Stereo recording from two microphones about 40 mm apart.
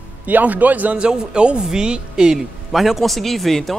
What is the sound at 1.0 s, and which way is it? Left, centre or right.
Speech, right.